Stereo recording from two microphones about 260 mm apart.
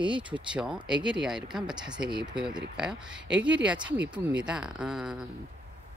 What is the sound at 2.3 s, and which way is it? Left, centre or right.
Speech, centre.